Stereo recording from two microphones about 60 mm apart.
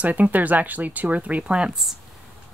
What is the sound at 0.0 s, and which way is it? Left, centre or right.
Speech, right.